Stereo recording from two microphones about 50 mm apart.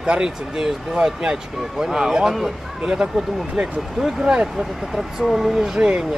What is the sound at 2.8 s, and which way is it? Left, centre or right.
Speech, centre.